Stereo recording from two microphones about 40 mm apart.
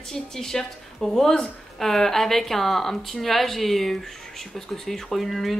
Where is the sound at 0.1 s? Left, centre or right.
Centre.